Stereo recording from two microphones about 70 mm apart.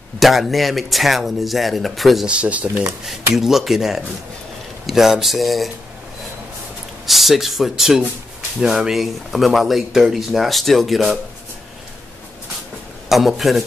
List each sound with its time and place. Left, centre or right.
0.2 s speech: centre
2.2 s speech: centre
3.1 s speech: centre
7.1 s speech: centre
13.1 s speech: centre